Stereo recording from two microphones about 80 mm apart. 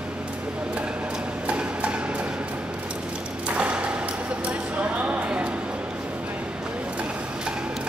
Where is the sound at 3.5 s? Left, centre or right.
Centre.